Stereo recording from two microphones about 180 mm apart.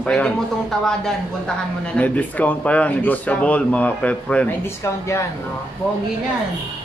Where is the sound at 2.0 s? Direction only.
10° left (ahead or behind).